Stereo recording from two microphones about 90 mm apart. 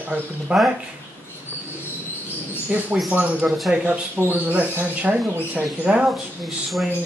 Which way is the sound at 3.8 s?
25° right (ahead or behind).